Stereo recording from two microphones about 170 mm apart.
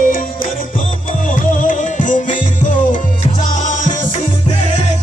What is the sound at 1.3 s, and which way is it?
Music, 50° left (ahead or behind).